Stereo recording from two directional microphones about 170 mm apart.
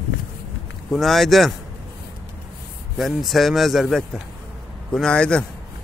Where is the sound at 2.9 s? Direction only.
Centre (ahead or behind).